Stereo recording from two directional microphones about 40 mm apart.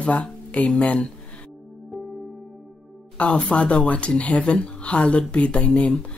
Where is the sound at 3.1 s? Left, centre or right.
Left.